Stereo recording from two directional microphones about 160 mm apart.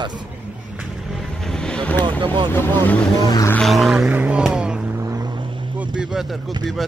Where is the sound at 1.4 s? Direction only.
5° left (ahead or behind).